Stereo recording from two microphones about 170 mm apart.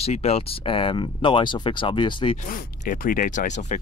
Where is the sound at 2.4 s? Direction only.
50° left (ahead or behind).